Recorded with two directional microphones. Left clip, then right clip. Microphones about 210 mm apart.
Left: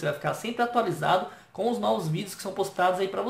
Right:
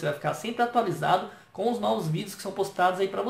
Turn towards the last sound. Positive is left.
turn(degrees=5)  # may be behind; listen again after turning